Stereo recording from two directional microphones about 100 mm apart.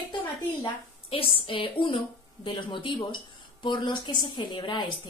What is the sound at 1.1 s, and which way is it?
A woman's voice, 65° left (ahead or behind).